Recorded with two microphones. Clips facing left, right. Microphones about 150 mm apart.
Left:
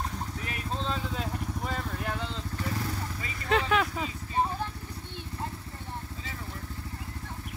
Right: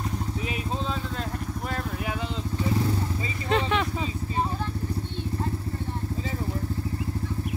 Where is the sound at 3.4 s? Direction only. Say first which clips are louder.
Right 1 dB; centre (ahead or behind).